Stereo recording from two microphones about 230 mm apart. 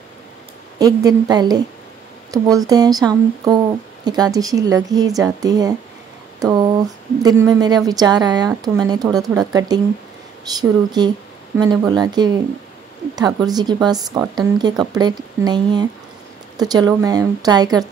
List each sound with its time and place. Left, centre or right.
0.7 s a woman's voice: centre